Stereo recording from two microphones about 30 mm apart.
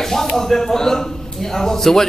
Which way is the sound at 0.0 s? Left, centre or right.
Centre.